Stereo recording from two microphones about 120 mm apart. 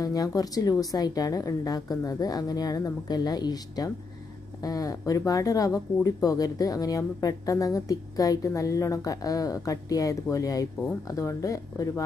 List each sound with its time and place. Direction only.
0.0 s a woman's voice: 30° left (ahead or behind)